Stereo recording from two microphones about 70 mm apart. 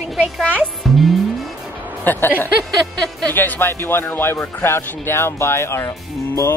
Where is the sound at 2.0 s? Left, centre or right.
Left.